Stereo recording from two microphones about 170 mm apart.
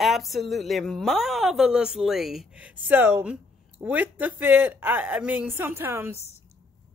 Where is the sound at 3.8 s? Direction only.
10° right (ahead or behind).